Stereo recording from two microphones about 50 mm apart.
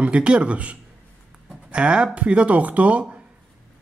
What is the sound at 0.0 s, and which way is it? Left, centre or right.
Speech, right.